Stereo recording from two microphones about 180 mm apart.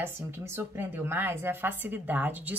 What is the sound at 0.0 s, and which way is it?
A woman's voice, 15° right (ahead or behind).